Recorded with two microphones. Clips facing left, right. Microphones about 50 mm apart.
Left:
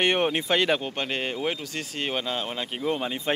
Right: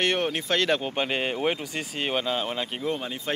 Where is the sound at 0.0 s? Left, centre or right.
Centre.